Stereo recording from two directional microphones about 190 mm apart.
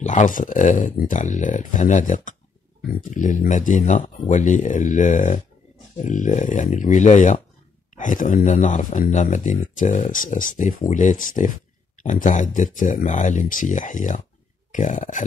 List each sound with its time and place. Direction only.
0.0 s speech: 40° left (ahead or behind)